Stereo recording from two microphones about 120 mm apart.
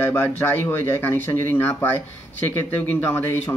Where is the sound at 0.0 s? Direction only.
20° left (ahead or behind).